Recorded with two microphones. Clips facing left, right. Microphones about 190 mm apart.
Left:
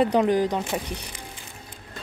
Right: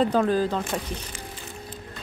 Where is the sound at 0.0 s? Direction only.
15° left (ahead or behind).